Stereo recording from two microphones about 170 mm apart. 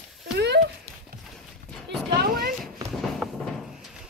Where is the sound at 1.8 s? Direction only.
70° right (ahead or behind).